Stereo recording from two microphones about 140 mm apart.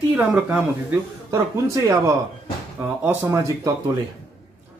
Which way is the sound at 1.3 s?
25° right (ahead or behind).